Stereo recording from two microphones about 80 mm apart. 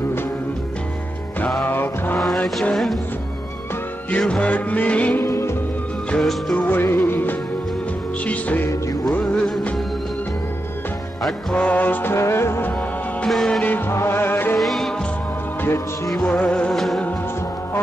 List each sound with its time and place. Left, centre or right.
1.6 s music: left
2.7 s music: centre
4.2 s music: centre
5.2 s music: left
6.5 s music: left
11.5 s music: centre
13.3 s music: centre
13.6 s music: left
14.6 s music: centre
16.2 s music: centre
16.7 s music: centre